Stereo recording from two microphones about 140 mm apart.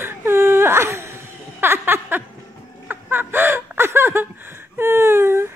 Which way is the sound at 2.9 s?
15° right (ahead or behind).